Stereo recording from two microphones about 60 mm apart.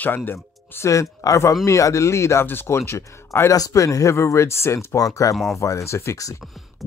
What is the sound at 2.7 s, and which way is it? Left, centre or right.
Speech, left.